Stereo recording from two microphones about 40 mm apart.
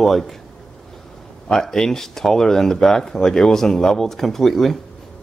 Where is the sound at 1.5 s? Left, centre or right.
Centre.